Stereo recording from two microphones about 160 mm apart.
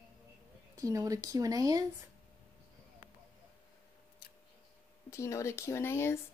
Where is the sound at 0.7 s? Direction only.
20° right (ahead or behind).